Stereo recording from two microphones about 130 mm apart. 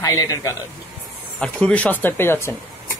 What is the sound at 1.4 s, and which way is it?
Speech, 10° left (ahead or behind).